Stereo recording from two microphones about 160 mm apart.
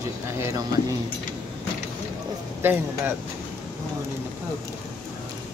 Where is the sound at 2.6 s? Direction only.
15° right (ahead or behind).